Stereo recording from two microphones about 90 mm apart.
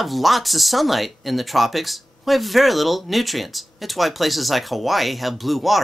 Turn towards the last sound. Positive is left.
turn(degrees=0)  # may be behind; listen again after turning